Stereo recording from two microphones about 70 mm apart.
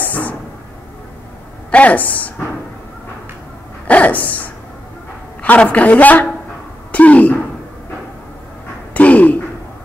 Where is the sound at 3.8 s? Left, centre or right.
Left.